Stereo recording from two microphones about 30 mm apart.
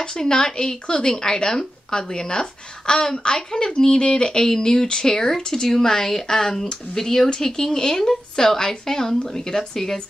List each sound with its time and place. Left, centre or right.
0.0 s speech: left